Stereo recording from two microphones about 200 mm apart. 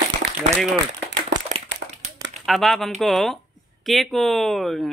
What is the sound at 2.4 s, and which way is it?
Speech, centre (ahead or behind).